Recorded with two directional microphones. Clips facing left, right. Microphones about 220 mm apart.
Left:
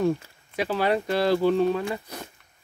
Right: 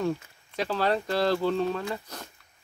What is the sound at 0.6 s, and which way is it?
Speech, 10° left (ahead or behind).